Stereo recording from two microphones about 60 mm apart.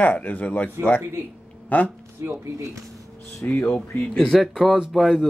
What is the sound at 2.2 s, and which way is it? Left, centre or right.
Speech, right.